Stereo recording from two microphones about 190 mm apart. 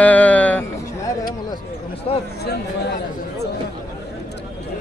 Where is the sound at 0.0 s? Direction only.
10° left (ahead or behind).